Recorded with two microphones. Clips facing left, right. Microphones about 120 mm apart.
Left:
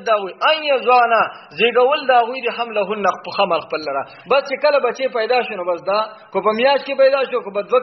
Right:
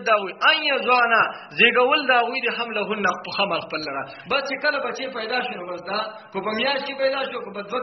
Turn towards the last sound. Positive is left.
turn(degrees=60)  # may be behind; listen again after turning